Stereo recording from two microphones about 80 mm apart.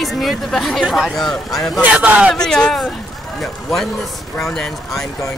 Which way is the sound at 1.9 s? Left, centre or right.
Centre.